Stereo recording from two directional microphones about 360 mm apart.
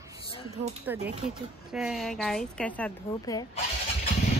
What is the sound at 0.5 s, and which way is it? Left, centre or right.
Speech, centre.